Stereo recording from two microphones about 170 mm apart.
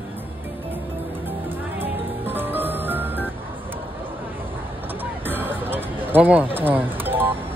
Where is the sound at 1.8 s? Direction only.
10° right (ahead or behind).